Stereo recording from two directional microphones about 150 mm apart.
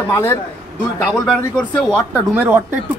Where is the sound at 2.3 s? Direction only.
15° right (ahead or behind).